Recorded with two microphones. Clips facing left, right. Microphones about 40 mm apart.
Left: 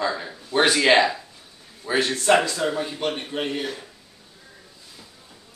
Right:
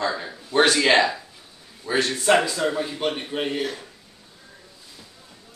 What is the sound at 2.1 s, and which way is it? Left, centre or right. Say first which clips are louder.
Speech: even; centre.